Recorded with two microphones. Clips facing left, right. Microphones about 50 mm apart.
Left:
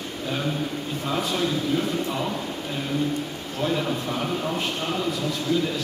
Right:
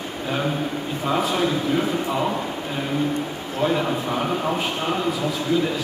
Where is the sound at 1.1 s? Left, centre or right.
Centre.